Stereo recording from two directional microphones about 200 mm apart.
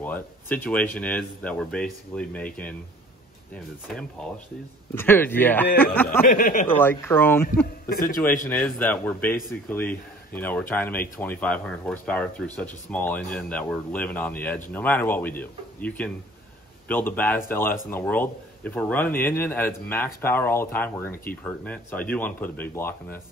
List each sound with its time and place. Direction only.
0.0 s speech: 10° left (ahead or behind)
6.2 s speech: 45° left (ahead or behind)
6.7 s speech: 10° left (ahead or behind)
7.9 s speech: 45° left (ahead or behind)
8.5 s speech: 10° left (ahead or behind)